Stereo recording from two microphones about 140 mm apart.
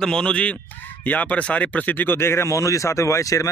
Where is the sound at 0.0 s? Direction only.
5° left (ahead or behind).